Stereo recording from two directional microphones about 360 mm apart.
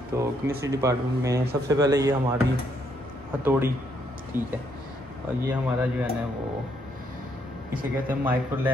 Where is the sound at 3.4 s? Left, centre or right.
Centre.